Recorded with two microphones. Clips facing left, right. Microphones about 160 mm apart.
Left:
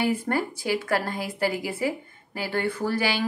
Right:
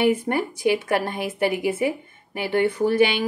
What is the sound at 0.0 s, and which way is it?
Speech, 20° right (ahead or behind).